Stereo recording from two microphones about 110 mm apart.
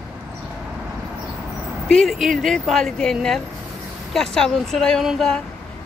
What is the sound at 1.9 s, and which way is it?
Speech, centre (ahead or behind).